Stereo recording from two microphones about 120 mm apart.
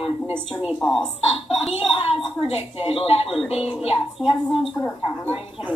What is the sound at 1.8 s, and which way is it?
A woman's voice, 50° left (ahead or behind).